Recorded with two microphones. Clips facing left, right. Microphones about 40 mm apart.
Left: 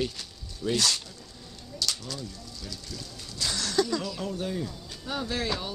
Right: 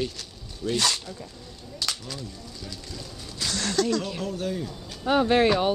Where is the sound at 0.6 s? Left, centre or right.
Centre.